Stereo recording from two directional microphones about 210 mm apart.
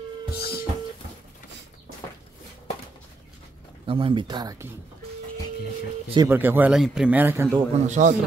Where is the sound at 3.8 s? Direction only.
25° right (ahead or behind).